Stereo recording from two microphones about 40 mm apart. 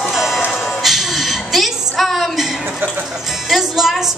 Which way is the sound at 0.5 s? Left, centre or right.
Centre.